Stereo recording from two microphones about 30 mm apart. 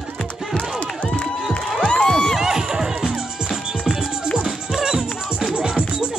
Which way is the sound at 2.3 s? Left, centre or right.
Centre.